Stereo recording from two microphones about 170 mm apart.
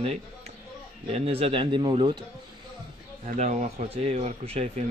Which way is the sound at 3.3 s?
40° right (ahead or behind).